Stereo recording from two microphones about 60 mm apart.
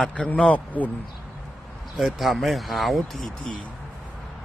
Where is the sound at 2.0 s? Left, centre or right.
Centre.